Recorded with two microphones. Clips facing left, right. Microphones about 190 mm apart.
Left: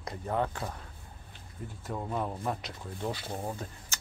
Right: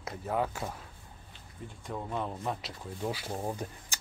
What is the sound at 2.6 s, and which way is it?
Speech, 10° right (ahead or behind).